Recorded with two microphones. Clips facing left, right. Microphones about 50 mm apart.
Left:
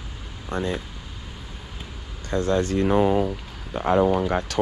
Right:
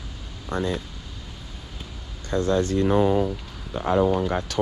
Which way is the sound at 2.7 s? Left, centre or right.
Left.